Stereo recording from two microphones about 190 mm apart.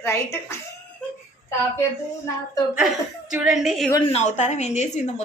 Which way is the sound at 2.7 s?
5° right (ahead or behind).